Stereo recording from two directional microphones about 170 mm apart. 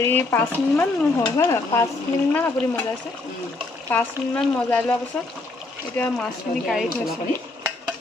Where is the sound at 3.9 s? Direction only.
10° left (ahead or behind).